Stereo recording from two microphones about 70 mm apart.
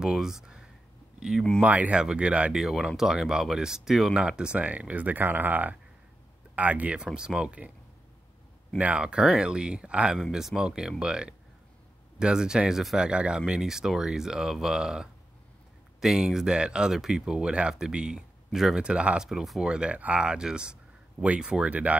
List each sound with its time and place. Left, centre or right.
0.0 s speech: centre
1.6 s speech: centre
2.5 s speech: centre
8.7 s speech: centre